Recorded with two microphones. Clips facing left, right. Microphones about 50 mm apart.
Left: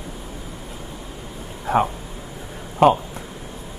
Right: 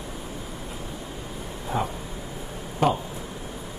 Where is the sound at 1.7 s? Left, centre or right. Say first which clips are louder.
Left 9 dB; left.